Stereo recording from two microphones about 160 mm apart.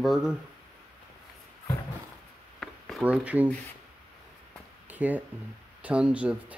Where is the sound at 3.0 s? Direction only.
10° right (ahead or behind).